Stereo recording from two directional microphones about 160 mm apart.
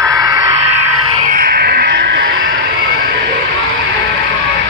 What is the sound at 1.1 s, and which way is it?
Music, 55° right (ahead or behind).